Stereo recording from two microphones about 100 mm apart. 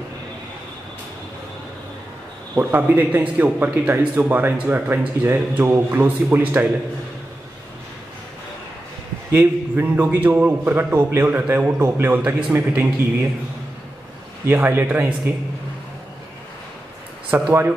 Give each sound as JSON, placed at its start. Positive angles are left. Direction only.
{"t": 2.5, "sound": "a man's voice", "side_deg": -20}
{"t": 9.3, "sound": "a man's voice", "side_deg": -25}
{"t": 14.4, "sound": "a man's voice", "side_deg": -20}
{"t": 17.3, "sound": "a man's voice", "side_deg": -20}